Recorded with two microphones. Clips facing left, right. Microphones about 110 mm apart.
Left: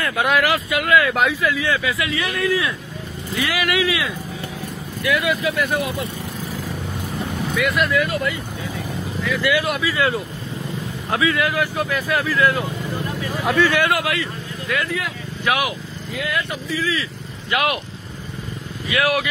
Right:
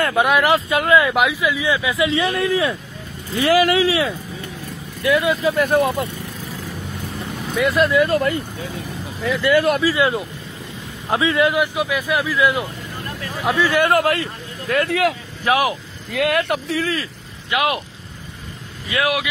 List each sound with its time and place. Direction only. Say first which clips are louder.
0.0 s speech: right 3 dB; 25° right (ahead or behind)
1.1 s speech: right 1 dB; 15° right (ahead or behind); by 6.0 s 45° right (ahead or behind)
7.5 s speech: right 4 dB; 30° right (ahead or behind)
8.1 s speech: right 5 dB; 45° right (ahead or behind)
9.6 s speech: right 5 dB; 40° right (ahead or behind)
9.9 s speech: right 2 dB; 20° right (ahead or behind)
13.8 s speech: right 4 dB; 40° right (ahead or behind)
15.4 s speech: right 3 dB; 30° right (ahead or behind)
16.1 s speech: right 7 dB; 65° right (ahead or behind)
17.5 s speech: right 1 dB; 20° right (ahead or behind)
18.9 s speech: even; 25° right (ahead or behind)